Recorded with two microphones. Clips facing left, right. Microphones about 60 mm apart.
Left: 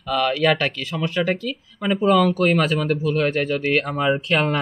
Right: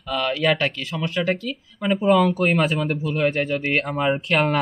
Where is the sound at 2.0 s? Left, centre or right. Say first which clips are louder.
Left 1 dB; centre.